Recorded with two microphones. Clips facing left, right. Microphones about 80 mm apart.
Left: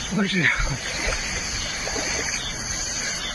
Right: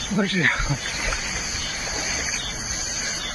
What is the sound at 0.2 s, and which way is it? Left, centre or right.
Speech, right.